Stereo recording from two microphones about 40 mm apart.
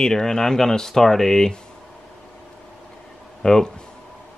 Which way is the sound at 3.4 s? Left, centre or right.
Centre.